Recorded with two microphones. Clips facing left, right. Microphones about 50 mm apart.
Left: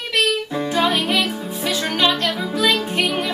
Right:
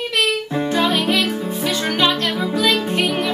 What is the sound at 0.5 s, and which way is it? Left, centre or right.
Music, centre.